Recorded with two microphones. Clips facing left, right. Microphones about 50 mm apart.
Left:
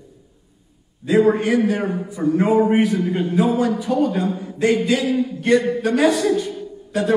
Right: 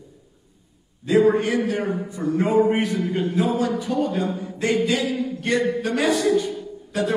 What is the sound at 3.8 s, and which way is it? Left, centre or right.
Speech, left.